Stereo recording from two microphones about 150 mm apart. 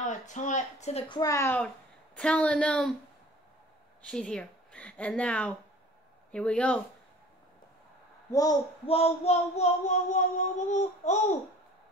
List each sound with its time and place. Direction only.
0.1 s child singing: 55° left (ahead or behind)
1.0 s a woman's voice: 30° left (ahead or behind)
1.3 s a woman's voice: 15° left (ahead or behind)
2.1 s a woman's voice: 5° left (ahead or behind)
4.1 s a woman's voice: 5° left (ahead or behind)
8.3 s a child's voice: 25° left (ahead or behind)
8.8 s child singing: 40° left (ahead or behind)